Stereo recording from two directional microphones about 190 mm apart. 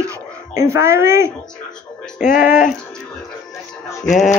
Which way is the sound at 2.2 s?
50° left (ahead or behind).